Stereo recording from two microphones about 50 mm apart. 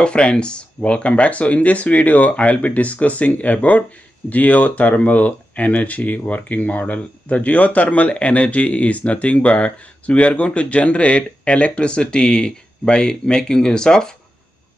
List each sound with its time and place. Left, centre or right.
0.0 s speech: centre